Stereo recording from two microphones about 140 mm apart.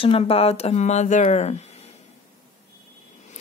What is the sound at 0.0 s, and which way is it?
Speech, 45° left (ahead or behind).